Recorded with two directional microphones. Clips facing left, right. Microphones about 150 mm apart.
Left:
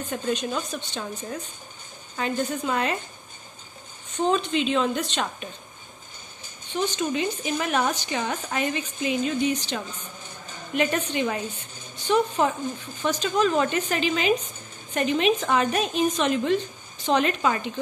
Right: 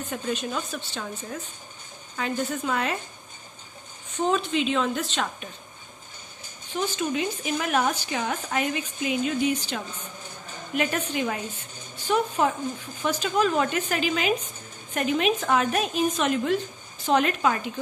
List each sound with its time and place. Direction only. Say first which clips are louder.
0.1 s speech: left 3 dB; 5° right (ahead or behind)
4.3 s speech: left 1 dB; 5° right (ahead or behind)
6.7 s speech: left 1 dB; 5° right (ahead or behind)